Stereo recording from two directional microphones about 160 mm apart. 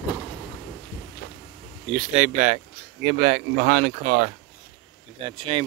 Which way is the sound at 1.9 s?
45° right (ahead or behind).